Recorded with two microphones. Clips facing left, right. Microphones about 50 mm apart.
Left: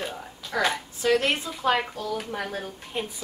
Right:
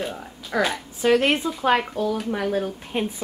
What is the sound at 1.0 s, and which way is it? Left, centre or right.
Speech, right.